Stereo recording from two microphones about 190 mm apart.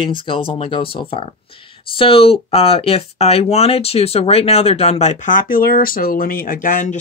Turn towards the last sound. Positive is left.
turn(degrees=45)  # may be behind; listen again after turning